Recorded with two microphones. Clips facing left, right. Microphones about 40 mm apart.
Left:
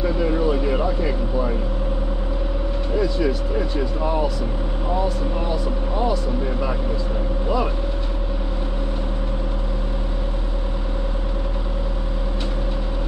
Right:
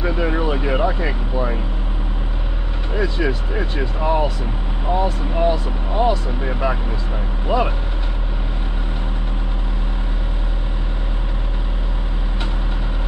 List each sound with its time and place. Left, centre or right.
0.0 s speech: right
3.0 s speech: right